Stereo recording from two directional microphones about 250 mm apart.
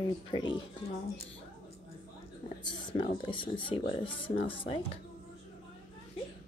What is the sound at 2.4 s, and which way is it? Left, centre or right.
A woman's voice, left.